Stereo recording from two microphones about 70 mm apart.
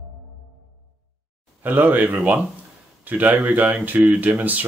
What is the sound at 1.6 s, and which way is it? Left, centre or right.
Speech, right.